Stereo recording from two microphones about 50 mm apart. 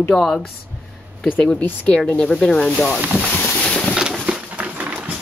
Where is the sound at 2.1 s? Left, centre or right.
Centre.